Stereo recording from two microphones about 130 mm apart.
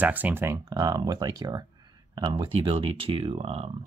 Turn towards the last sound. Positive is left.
turn(degrees=-50)  # may be behind; listen again after turning